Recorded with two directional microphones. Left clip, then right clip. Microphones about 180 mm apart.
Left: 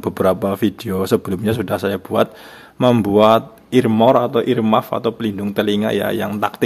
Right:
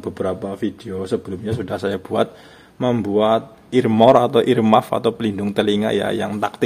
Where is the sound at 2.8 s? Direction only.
20° left (ahead or behind).